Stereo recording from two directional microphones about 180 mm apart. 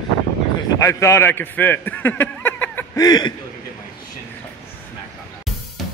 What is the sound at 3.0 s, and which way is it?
Speech, 20° left (ahead or behind).